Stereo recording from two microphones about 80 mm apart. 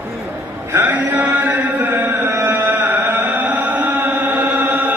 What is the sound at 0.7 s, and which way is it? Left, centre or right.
Mantra, right.